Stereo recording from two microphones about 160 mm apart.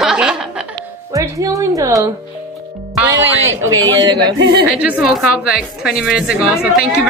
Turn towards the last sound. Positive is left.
turn(degrees=-5)  # may be behind; listen again after turning